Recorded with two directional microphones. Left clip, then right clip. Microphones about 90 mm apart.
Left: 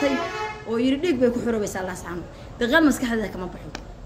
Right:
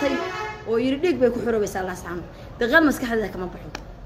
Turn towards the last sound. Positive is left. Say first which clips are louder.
# right 2 dB
turn(degrees=40)  # may be behind; listen again after turning